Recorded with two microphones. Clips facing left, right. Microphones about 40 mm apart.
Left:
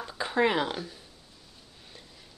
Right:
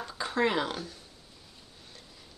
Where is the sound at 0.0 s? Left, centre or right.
Centre.